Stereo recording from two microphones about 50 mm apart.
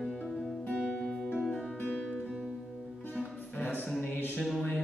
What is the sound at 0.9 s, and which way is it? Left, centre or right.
Music, centre.